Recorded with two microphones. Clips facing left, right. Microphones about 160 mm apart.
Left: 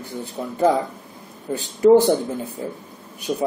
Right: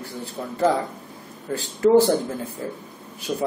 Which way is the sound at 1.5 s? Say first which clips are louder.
Left 2 dB; 20° left (ahead or behind).